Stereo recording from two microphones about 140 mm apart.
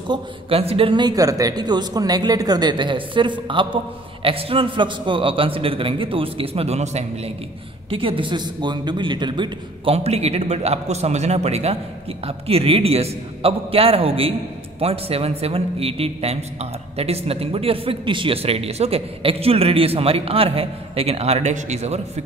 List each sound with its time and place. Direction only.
0.1 s speech: 45° right (ahead or behind)
7.9 s speech: 40° right (ahead or behind)
9.9 s speech: 50° right (ahead or behind)